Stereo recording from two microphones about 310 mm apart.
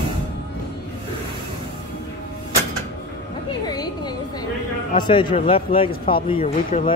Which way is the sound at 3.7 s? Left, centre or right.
Centre.